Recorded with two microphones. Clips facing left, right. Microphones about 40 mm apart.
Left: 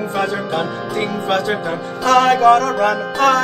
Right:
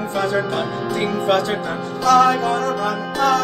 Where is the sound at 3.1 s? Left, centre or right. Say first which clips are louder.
Left 2 dB; left.